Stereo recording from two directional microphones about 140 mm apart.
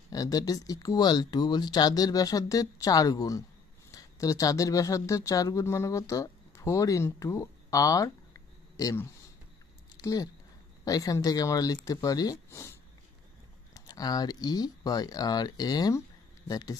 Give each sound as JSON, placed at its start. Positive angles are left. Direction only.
{"t": 0.1, "sound": "speech", "side_deg": 25}
{"t": 10.0, "sound": "speech", "side_deg": 25}
{"t": 13.7, "sound": "speech", "side_deg": 30}